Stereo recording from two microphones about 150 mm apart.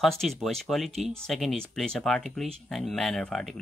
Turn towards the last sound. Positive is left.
turn(degrees=5)  # may be behind; listen again after turning